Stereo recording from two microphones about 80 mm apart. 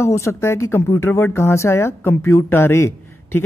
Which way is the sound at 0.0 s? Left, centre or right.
Left.